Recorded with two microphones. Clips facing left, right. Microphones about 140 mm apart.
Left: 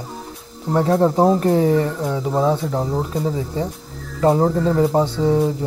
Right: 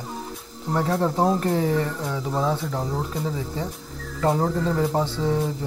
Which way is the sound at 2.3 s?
40° left (ahead or behind).